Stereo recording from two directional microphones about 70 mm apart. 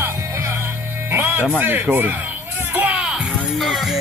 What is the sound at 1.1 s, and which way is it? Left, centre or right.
Music, right.